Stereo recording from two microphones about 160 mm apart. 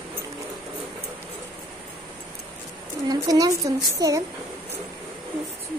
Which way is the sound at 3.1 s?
20° right (ahead or behind).